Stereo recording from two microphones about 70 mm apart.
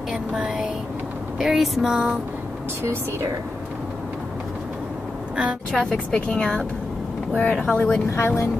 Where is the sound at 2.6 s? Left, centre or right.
Right.